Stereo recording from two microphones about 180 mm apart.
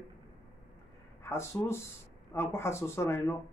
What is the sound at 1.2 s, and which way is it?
Speech, 15° left (ahead or behind).